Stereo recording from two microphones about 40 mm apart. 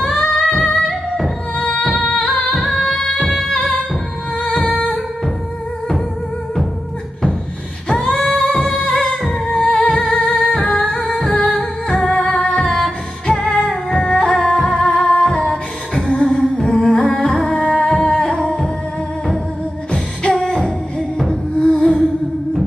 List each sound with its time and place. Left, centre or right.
0.0 s music: left
0.7 s music: centre
2.3 s music: centre
7.9 s female singing: left
8.5 s music: centre
9.9 s music: left
11.3 s music: left
11.9 s music: centre
14.6 s music: centre
14.9 s music: left
19.9 s singing: left
21.3 s music: centre